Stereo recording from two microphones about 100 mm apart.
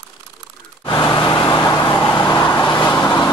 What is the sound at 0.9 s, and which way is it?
Vehicle, 40° left (ahead or behind).